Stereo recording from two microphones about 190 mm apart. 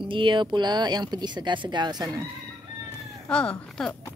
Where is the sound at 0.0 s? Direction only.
25° right (ahead or behind).